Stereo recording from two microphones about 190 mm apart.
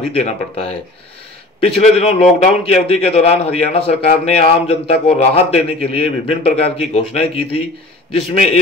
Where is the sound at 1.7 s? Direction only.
35° left (ahead or behind).